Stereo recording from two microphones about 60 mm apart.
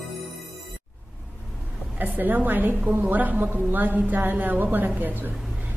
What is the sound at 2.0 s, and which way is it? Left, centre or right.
A woman's voice, right.